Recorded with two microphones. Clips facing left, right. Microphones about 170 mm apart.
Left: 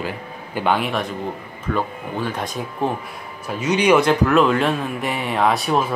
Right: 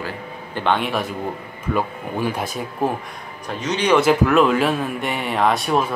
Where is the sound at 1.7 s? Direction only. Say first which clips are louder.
Right 1 dB; 10° right (ahead or behind).